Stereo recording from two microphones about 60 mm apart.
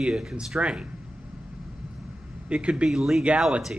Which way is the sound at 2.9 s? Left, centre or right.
Centre.